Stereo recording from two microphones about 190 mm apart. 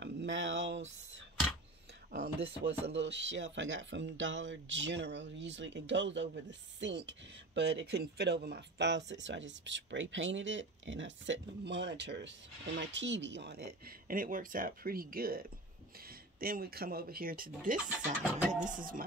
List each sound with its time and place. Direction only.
0.0 s speech: 70° right (ahead or behind)
2.1 s speech: 60° right (ahead or behind)